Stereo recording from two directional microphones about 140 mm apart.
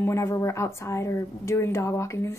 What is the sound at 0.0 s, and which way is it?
Speech, 20° left (ahead or behind).